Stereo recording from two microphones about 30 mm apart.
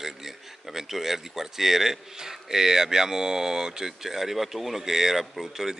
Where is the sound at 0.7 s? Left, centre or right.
Centre.